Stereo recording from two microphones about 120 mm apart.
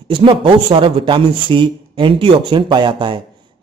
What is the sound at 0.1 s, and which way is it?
Speech, 45° right (ahead or behind).